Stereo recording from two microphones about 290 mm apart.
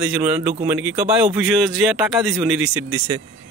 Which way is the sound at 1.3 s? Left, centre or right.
Centre.